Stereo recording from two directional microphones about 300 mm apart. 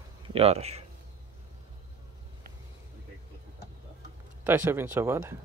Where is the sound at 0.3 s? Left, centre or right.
Centre.